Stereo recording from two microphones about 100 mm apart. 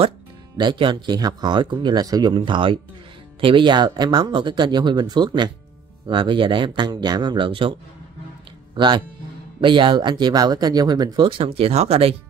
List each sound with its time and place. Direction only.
0.6 s speech: 50° right (ahead or behind)
8.7 s speech: 50° right (ahead or behind); by 12.2 s 90° right